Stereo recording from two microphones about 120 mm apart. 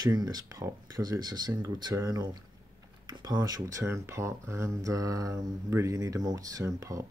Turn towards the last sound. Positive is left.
turn(degrees=-25)  # may be behind; listen again after turning